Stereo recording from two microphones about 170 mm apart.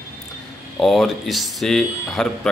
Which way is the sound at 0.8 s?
Centre (ahead or behind).